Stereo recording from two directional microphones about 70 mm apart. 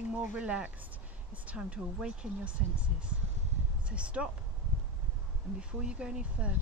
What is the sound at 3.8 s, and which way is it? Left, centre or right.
Speech, centre.